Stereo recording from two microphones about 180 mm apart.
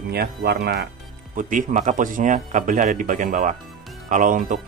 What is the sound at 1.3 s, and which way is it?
Speech, 45° right (ahead or behind).